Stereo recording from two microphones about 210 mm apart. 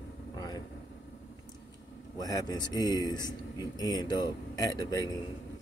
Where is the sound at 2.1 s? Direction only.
15° left (ahead or behind).